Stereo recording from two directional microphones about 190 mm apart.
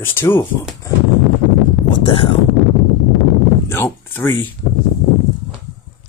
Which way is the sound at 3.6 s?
10° left (ahead or behind).